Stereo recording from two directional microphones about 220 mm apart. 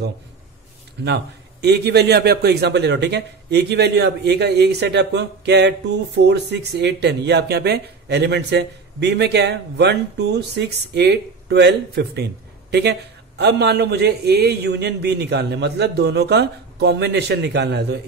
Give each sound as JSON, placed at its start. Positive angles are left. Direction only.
{"t": 1.0, "sound": "a man's voice", "side_deg": -50}
{"t": 13.4, "sound": "a man's voice", "side_deg": -50}